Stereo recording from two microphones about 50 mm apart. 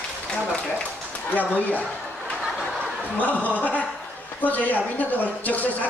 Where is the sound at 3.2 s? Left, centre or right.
Left.